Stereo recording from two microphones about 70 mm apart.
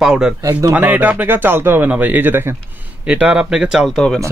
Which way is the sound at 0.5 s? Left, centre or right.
Right.